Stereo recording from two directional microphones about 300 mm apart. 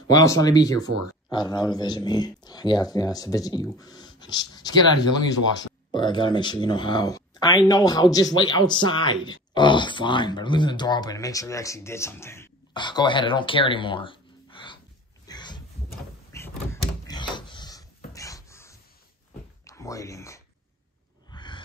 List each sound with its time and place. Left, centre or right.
0.1 s speech: centre
0.7 s speech: right
1.3 s speech: centre
5.9 s speech: centre
15.2 s a sound: centre
16.3 s door: centre
17.1 s a sound: centre